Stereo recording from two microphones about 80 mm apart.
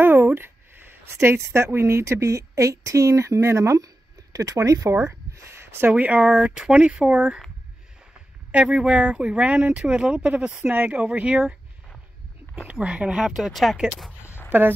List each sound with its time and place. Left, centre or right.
0.0 s speech: right
5.9 s speech: centre
6.2 s speech: centre
8.6 s speech: centre
8.9 s speech: centre
12.5 s speech: centre
14.2 s a sound: left